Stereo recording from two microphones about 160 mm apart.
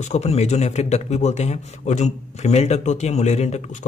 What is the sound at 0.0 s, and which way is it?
A man's voice, 45° left (ahead or behind).